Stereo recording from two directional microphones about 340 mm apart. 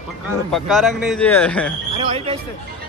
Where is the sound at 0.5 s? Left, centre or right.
Centre.